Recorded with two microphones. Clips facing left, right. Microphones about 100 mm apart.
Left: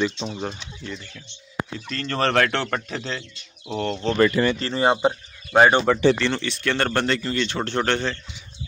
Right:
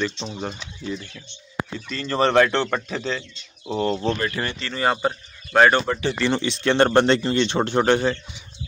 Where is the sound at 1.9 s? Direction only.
5° right (ahead or behind).